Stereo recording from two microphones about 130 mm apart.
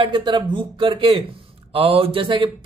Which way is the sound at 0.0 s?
35° right (ahead or behind).